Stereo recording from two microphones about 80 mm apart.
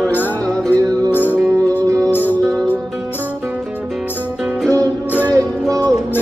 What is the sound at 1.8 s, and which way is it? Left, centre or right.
Music, right.